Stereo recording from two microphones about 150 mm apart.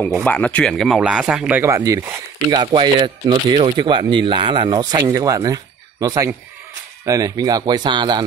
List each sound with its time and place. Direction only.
0.2 s speech: 10° left (ahead or behind); by 1.8 s 15° right (ahead or behind)
1.8 s speech: 25° right (ahead or behind)